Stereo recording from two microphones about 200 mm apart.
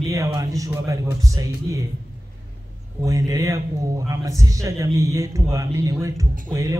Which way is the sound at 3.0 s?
15° right (ahead or behind).